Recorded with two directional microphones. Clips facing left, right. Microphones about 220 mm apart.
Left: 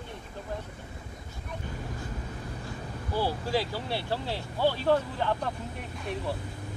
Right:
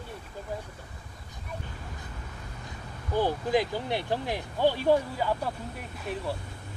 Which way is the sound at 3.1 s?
20° right (ahead or behind).